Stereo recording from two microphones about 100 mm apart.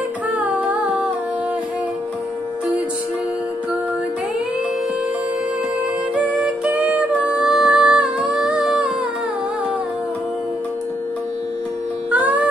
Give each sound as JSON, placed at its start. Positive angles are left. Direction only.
{"t": 0.3, "sound": "music", "side_deg": -15}
{"t": 6.3, "sound": "music", "side_deg": -10}
{"t": 12.1, "sound": "music", "side_deg": -15}